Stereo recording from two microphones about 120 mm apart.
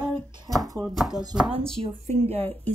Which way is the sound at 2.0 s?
65° right (ahead or behind).